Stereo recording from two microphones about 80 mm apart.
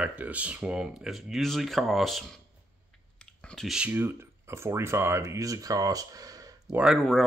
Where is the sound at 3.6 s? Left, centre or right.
Centre.